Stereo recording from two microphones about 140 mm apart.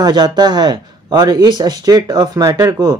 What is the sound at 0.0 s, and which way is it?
A man's voice, 30° right (ahead or behind).